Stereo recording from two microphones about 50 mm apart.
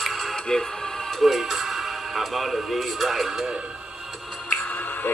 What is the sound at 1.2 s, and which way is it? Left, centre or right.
Speech, centre.